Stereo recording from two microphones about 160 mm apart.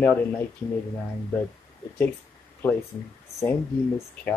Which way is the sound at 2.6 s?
15° left (ahead or behind).